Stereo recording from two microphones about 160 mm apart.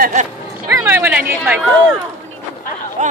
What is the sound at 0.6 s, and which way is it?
Speech, 15° right (ahead or behind).